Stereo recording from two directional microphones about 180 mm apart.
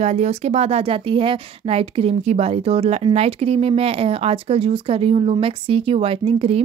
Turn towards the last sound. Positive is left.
turn(degrees=-35)  # may be behind; listen again after turning